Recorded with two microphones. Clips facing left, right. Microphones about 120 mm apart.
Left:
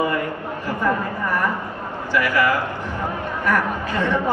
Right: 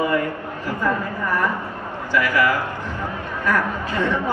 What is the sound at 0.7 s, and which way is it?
Speech, 15° left (ahead or behind).